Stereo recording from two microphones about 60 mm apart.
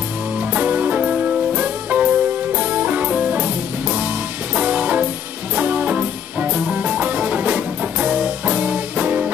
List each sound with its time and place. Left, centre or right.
0.6 s music: right
4.6 s music: right